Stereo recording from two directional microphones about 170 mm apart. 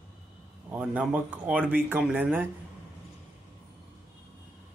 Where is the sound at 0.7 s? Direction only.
10° right (ahead or behind).